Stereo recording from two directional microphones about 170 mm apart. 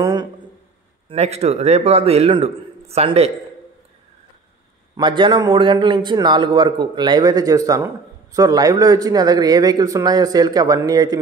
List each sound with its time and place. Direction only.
0.0 s a sound: 25° right (ahead or behind)
1.0 s a man's voice: 40° right (ahead or behind)
4.9 s a man's voice: 25° right (ahead or behind)